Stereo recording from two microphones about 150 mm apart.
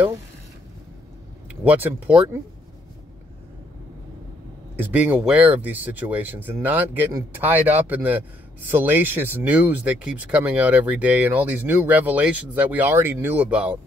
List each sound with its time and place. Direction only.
1.6 s speech: 10° right (ahead or behind)
4.7 s speech: 10° right (ahead or behind)
7.1 s speech: 20° right (ahead or behind)
7.4 s speech: 10° right (ahead or behind)